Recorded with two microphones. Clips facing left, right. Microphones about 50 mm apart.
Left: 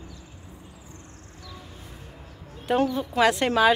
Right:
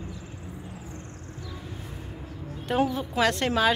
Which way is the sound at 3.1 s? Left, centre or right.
Centre.